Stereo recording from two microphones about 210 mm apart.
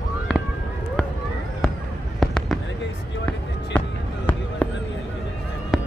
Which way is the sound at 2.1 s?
Centre (ahead or behind).